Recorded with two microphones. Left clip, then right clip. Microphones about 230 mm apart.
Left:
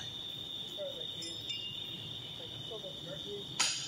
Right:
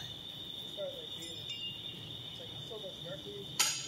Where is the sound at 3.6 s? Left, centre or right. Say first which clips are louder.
Right 1 dB; right.